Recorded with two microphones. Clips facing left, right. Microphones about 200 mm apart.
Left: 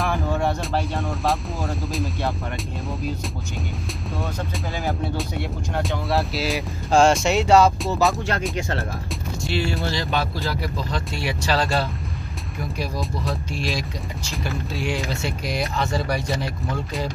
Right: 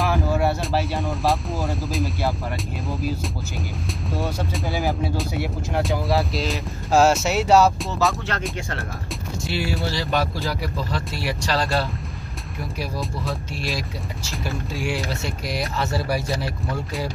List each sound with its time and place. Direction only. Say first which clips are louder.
0.0 s speech: right 2 dB; 5° right (ahead or behind)
4.7 s speech: right 1 dB; 5° right (ahead or behind)
8.1 s speech: left 3 dB; 15° left (ahead or behind)
9.4 s speech: left 1 dB; 5° right (ahead or behind)